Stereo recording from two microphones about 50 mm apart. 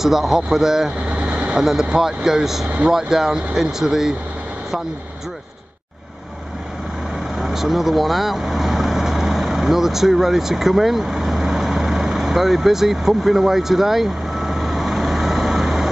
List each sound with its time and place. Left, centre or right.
0.0 s a man's voice: centre
1.0 s vehicle: right
1.6 s a man's voice: centre
7.3 s vehicle: centre